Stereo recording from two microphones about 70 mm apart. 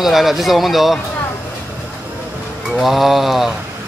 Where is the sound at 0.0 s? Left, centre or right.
Centre.